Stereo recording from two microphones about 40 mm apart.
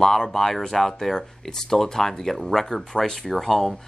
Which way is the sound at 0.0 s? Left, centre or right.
Centre.